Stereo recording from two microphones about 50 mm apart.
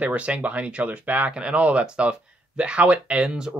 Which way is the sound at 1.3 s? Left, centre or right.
Right.